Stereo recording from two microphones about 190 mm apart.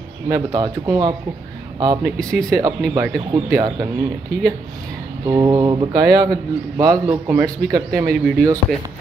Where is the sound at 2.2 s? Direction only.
5° left (ahead or behind).